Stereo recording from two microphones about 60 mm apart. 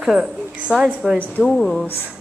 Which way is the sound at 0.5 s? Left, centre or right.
Centre.